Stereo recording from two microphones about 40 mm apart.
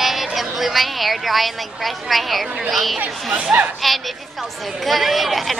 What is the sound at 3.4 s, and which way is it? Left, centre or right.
Speech, right.